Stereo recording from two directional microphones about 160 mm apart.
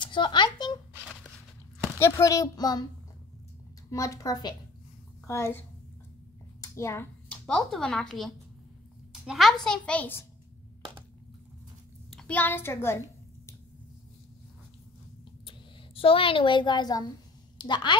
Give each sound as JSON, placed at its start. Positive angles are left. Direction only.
{"t": 0.0, "sound": "a sound", "side_deg": 30}
{"t": 2.0, "sound": "a woman's voice", "side_deg": 15}
{"t": 3.9, "sound": "a woman's voice", "side_deg": 20}
{"t": 6.6, "sound": "a woman's voice", "side_deg": 15}
{"t": 12.1, "sound": "a child's voice", "side_deg": 5}
{"t": 15.4, "sound": "a woman's voice", "side_deg": 35}